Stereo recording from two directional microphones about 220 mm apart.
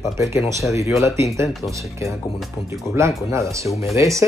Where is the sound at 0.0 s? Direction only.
15° right (ahead or behind).